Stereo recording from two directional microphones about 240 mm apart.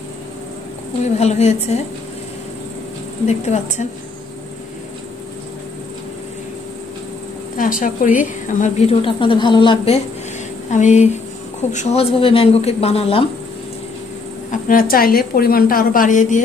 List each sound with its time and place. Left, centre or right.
1.1 s speech: left
3.3 s speech: left
7.5 s speech: left
14.5 s a woman's voice: left